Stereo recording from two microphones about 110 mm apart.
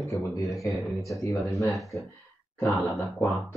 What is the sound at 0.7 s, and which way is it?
Speech, centre (ahead or behind).